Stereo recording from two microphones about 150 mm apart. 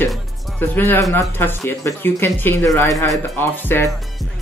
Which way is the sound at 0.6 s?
15° left (ahead or behind).